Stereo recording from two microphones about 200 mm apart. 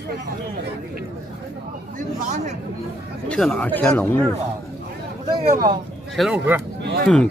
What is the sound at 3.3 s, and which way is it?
Speech, 5° left (ahead or behind).